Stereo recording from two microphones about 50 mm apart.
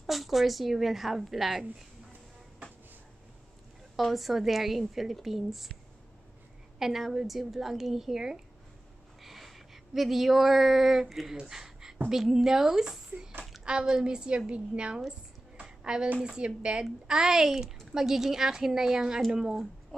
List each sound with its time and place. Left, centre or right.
0.0 s a woman's voice: centre
3.9 s a woman's voice: centre
6.8 s a woman's voice: centre; by 15.0 s right
15.6 s a sound: centre
16.2 s speech: centre
17.1 s a woman's voice: centre